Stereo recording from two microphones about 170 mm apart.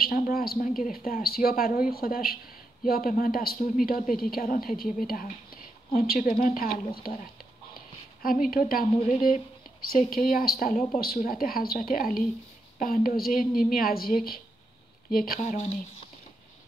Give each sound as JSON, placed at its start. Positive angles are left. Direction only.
{"t": 0.0, "sound": "a woman's voice", "side_deg": 60}
{"t": 7.7, "sound": "a woman's voice", "side_deg": 60}
{"t": 15.4, "sound": "speech", "side_deg": 40}